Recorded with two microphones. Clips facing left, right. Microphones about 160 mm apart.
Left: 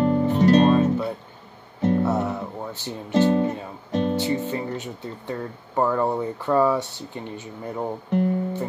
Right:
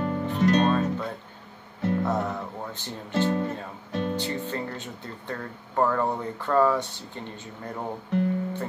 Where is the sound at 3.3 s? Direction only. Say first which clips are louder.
Left 6 dB; 30° left (ahead or behind).